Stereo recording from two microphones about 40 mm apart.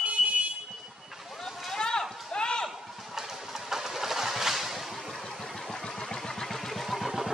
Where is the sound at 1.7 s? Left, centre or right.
Centre.